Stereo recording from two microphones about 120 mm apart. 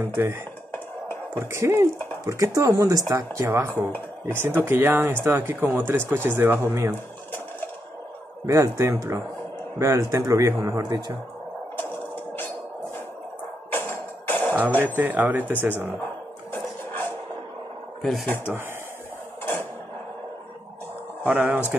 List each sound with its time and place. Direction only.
0.0 s speech: 20° right (ahead or behind)
8.5 s speech: 25° right (ahead or behind)
11.8 s a sound: 15° left (ahead or behind)
13.7 s music: 15° left (ahead or behind)
14.8 s speech: 15° right (ahead or behind)
18.2 s speech: 15° left (ahead or behind)
19.4 s a sound: 20° left (ahead or behind)
21.3 s speech: 15° right (ahead or behind)